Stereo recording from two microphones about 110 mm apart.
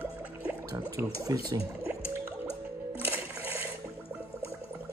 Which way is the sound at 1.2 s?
30° right (ahead or behind).